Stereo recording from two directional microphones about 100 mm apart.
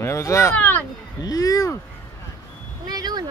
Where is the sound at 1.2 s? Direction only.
40° left (ahead or behind).